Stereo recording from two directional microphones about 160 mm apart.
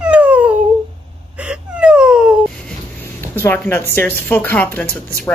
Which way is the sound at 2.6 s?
15° left (ahead or behind).